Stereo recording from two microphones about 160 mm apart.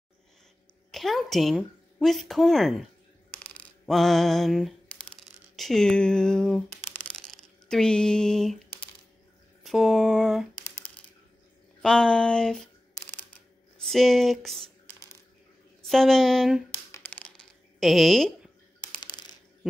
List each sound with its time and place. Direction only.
0.9 s speech: centre (ahead or behind)
3.8 s a sound: centre (ahead or behind)
9.6 s a sound: centre (ahead or behind)
11.8 s speech: 5° left (ahead or behind)
13.7 s speech: centre (ahead or behind)
15.8 s speech: centre (ahead or behind)
16.9 s a sound: 10° left (ahead or behind)
17.7 s speech: centre (ahead or behind)
18.8 s shuffling cards: 25° left (ahead or behind)